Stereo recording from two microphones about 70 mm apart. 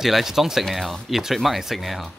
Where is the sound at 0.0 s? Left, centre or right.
Centre.